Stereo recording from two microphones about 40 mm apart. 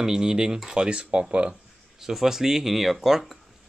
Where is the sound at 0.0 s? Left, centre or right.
Centre.